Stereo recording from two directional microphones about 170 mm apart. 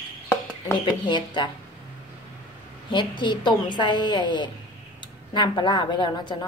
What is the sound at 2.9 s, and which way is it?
A woman's voice, 25° left (ahead or behind).